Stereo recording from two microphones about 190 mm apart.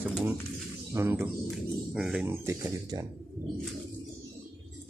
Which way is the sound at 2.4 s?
20° right (ahead or behind).